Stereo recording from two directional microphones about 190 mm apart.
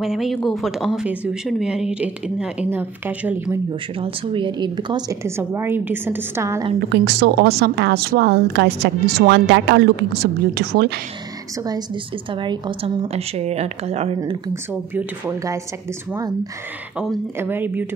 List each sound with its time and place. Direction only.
0.0 s speech: centre (ahead or behind)
3.9 s a woman's voice: 30° right (ahead or behind)
6.9 s a woman's voice: 60° right (ahead or behind)
11.5 s a woman's voice: 20° right (ahead or behind)
14.5 s a woman's voice: 10° right (ahead or behind)
16.9 s a woman's voice: centre (ahead or behind)